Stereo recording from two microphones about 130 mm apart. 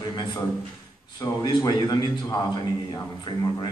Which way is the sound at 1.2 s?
30° left (ahead or behind).